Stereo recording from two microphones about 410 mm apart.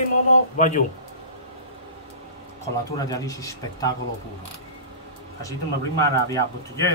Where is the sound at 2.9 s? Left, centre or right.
Centre.